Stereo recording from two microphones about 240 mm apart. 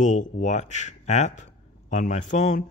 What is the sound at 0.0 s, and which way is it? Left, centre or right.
Speech, left.